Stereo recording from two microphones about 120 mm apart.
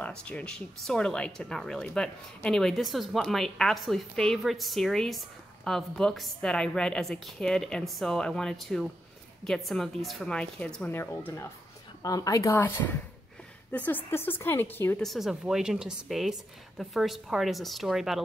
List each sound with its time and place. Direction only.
0.0 s a woman's voice: 10° left (ahead or behind)
11.0 s a woman's voice: 20° left (ahead or behind)
12.5 s a woman's voice: 15° left (ahead or behind)
15.0 s a woman's voice: centre (ahead or behind)